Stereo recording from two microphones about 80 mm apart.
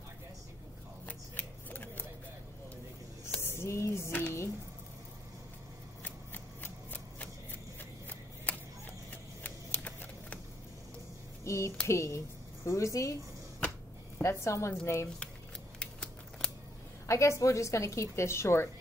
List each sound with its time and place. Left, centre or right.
1.0 s shuffling cards: left
3.4 s a sound: left
6.0 s shuffling cards: left
8.5 s a sound: centre
9.1 s shuffling cards: left
11.4 s a woman's voice: left
14.2 s a woman's voice: left
15.8 s scissors: centre
17.0 s a woman's voice: left